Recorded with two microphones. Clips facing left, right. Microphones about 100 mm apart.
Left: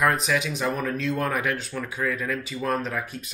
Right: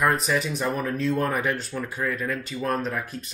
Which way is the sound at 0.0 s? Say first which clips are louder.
Even; centre (ahead or behind).